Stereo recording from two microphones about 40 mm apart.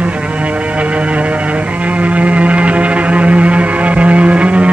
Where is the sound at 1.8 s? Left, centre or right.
Right.